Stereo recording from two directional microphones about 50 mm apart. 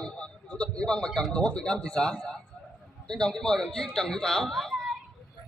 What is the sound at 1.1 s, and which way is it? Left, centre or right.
Speech, centre.